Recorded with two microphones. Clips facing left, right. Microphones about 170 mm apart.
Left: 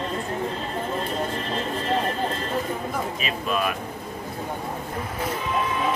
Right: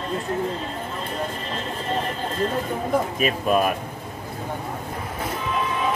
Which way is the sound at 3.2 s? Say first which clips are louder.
Right 5 dB; 45° right (ahead or behind).